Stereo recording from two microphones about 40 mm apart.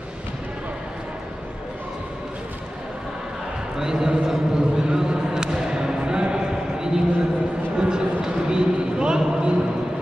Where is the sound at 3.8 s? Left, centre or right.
Centre.